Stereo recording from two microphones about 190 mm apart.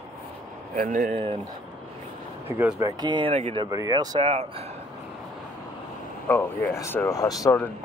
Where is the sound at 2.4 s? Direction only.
10° right (ahead or behind); by 3.6 s 30° right (ahead or behind).